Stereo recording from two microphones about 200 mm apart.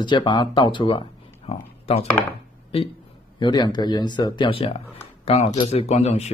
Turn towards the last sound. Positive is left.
turn(degrees=30)  # may be behind; listen again after turning